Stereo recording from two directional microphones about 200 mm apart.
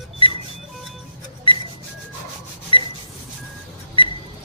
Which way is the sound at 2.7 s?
25° left (ahead or behind).